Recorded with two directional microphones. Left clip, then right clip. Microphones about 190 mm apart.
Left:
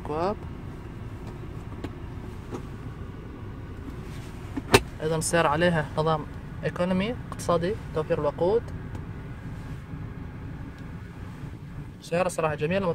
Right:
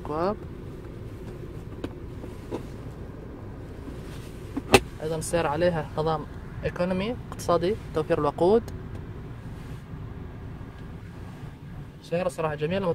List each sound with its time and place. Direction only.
0.1 s speech: centre (ahead or behind)
5.0 s speech: 10° left (ahead or behind); by 7.7 s 5° right (ahead or behind)
7.9 s speech: 20° right (ahead or behind)
12.1 s speech: 10° left (ahead or behind)